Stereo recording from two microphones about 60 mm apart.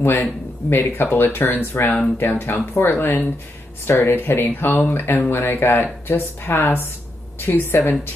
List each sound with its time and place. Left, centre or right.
0.0 s speech: left